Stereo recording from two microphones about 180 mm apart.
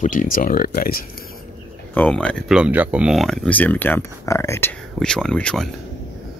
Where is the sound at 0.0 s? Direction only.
45° left (ahead or behind).